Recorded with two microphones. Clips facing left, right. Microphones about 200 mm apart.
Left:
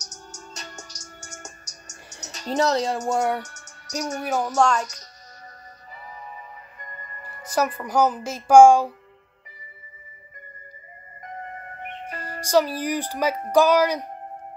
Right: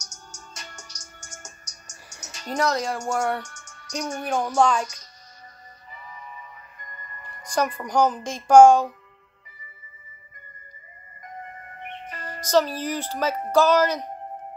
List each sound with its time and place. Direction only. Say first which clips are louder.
0.0 s music: left 5 dB; 35° left (ahead or behind)
2.0 s speech: left 4 dB; 20° left (ahead or behind)
3.5 s music: even; 40° left (ahead or behind)
4.2 s speech: even; 5° left (ahead or behind)
7.4 s speech: left 1 dB; 5° left (ahead or behind)
12.1 s speech: left 1 dB; 10° left (ahead or behind)